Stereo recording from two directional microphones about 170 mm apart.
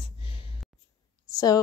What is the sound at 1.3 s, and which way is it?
Speech, 20° left (ahead or behind).